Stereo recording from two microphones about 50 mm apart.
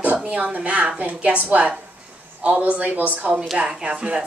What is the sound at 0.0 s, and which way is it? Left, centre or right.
A woman's voice, right.